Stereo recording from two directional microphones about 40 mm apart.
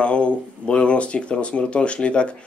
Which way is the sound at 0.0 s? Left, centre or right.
Left.